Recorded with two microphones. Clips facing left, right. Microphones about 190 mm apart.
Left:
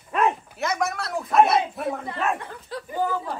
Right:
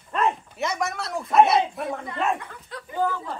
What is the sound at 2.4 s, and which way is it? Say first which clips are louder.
Speech: left 5 dB; 30° left (ahead or behind).